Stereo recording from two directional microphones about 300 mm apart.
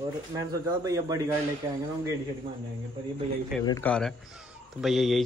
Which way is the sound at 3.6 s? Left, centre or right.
Centre.